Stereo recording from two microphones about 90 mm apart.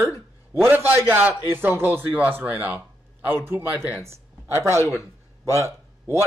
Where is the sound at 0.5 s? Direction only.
25° right (ahead or behind).